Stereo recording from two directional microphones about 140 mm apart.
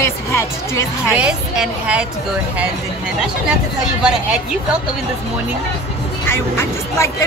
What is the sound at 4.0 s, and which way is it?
Speech, 5° right (ahead or behind).